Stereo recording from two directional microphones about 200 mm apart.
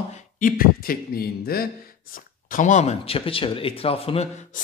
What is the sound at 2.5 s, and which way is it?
Speech, 40° left (ahead or behind).